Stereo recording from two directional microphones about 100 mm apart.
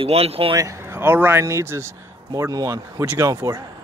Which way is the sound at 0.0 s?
85° right.